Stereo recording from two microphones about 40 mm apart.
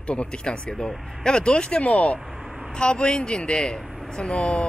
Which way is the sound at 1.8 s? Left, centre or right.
Left.